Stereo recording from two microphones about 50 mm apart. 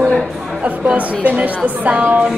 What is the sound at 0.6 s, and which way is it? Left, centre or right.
Speech, right.